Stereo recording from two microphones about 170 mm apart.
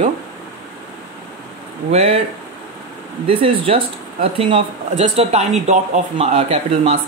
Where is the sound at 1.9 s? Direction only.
35° right (ahead or behind).